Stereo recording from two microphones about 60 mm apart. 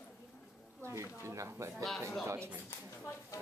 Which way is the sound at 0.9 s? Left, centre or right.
Right.